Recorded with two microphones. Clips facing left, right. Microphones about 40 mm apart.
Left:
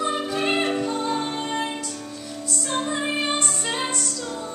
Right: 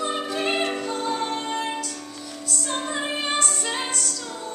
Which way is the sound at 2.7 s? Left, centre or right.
Centre.